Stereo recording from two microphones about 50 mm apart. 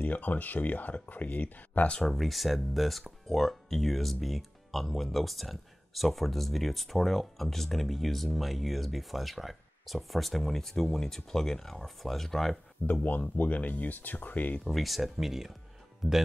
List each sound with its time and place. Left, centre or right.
0.0 s speech: left
2.0 s speech: centre
12.8 s speech: left
14.6 s speech: centre